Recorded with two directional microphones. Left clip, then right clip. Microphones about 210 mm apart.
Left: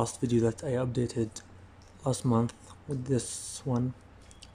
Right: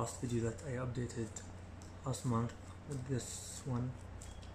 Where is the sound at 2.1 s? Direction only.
30° left (ahead or behind).